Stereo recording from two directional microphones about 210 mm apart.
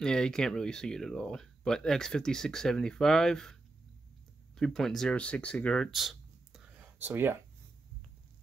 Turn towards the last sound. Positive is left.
turn(degrees=-10)  # may be behind; listen again after turning